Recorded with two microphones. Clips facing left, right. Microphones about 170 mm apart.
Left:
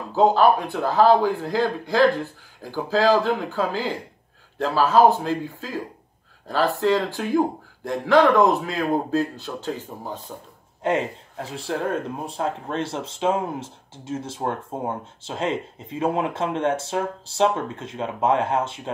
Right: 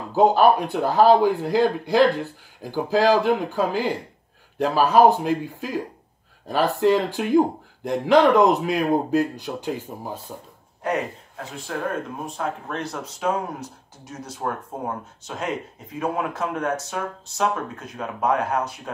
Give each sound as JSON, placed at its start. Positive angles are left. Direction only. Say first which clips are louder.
{"t": 0.1, "sound": "speech", "louder": "right 1 dB", "side_deg": -15}
{"t": 10.8, "sound": "speech", "louder": "left 2 dB", "side_deg": 25}